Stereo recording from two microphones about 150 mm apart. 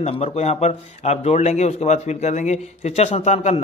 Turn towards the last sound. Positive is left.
turn(degrees=50)  # may be behind; listen again after turning